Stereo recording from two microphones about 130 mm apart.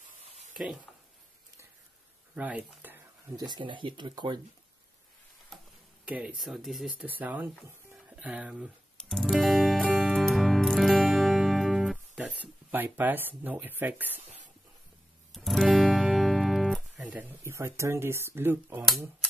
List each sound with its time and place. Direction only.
2.3 s speech: 10° right (ahead or behind)
2.8 s a sound: 15° right (ahead or behind)
3.3 s speech: 35° right (ahead or behind)
6.0 s speech: 5° right (ahead or behind)
7.1 s speech: 10° right (ahead or behind)
8.9 s music: centre (ahead or behind)
12.4 s speech: 15° right (ahead or behind)
15.3 s guitar: centre (ahead or behind)
17.0 s speech: 15° right (ahead or behind)